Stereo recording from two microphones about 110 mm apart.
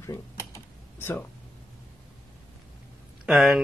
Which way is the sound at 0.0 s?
25° left (ahead or behind).